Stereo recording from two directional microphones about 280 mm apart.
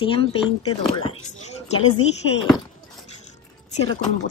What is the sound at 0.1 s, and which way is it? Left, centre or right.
Speech, centre.